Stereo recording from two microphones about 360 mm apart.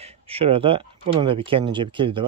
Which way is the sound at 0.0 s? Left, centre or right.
Centre.